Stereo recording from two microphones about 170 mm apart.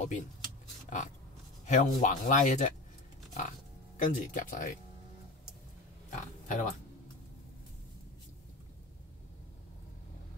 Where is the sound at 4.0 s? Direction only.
50° left (ahead or behind).